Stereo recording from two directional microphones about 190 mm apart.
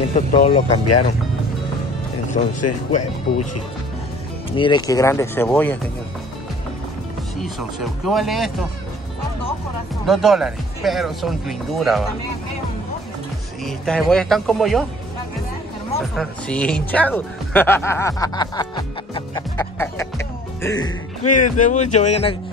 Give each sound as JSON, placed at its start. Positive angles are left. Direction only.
{"t": 0.1, "sound": "a man's voice", "side_deg": 35}
{"t": 2.3, "sound": "a man's voice", "side_deg": 40}
{"t": 4.5, "sound": "speech", "side_deg": 25}
{"t": 7.4, "sound": "speech", "side_deg": 0}
{"t": 10.0, "sound": "speech", "side_deg": 0}
{"t": 13.7, "sound": "speech", "side_deg": 0}
{"t": 16.2, "sound": "speech", "side_deg": 5}
{"t": 21.3, "sound": "a man's voice", "side_deg": 40}